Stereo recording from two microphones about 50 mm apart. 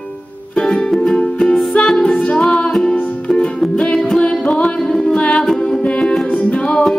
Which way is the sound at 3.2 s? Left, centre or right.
Left.